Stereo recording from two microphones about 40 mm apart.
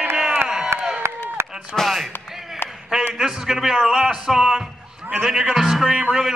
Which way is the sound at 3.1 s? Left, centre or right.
Centre.